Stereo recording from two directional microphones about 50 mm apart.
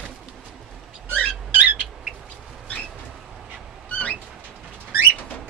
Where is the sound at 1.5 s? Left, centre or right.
Right.